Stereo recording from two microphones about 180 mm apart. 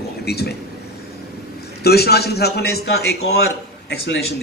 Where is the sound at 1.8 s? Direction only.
65° left (ahead or behind).